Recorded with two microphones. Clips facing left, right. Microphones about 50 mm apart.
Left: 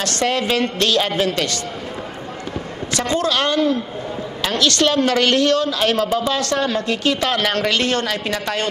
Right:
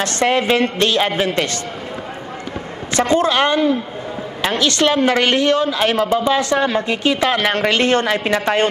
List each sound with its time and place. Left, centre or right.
0.0 s a woman's voice: right
2.9 s a woman's voice: right